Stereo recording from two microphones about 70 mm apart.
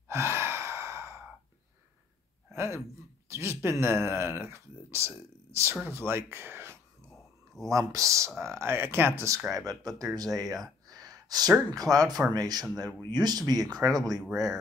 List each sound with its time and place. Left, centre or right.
0.1 s sigh: right
2.5 s speech: right
7.7 s speech: right
8.5 s speech: right
9.5 s speech: right
10.9 s a sound: right
11.7 s speech: right